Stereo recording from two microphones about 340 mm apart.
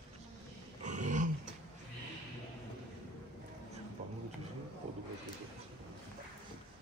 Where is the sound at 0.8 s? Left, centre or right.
Right.